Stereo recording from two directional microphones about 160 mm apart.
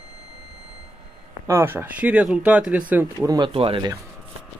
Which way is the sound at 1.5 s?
15° right (ahead or behind).